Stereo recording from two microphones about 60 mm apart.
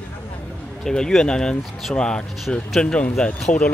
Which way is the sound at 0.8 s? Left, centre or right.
Centre.